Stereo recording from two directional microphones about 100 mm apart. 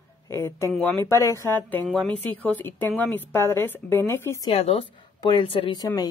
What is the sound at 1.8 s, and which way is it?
Speech, centre (ahead or behind).